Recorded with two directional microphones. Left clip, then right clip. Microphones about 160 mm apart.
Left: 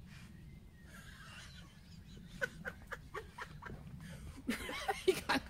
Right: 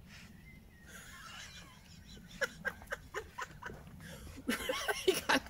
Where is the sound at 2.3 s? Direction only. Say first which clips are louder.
Right 4 dB; 10° right (ahead or behind).